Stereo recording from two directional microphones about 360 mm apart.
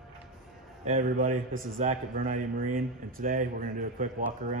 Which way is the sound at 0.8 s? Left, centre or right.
Centre.